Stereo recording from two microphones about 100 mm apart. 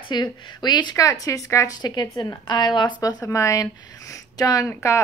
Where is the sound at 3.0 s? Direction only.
35° left (ahead or behind).